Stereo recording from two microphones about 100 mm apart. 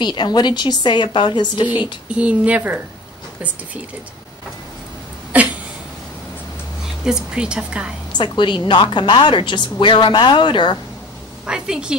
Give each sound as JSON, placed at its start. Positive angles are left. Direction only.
{"t": 0.0, "sound": "a woman's voice", "side_deg": 50}
{"t": 1.8, "sound": "a woman's voice", "side_deg": -10}
{"t": 7.1, "sound": "a woman's voice", "side_deg": -10}
{"t": 8.2, "sound": "a woman's voice", "side_deg": 55}
{"t": 11.4, "sound": "a woman's voice", "side_deg": -5}